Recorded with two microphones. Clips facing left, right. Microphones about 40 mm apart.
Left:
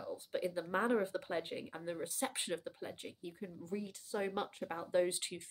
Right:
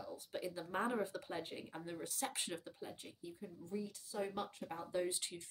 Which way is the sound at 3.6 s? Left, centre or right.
Left.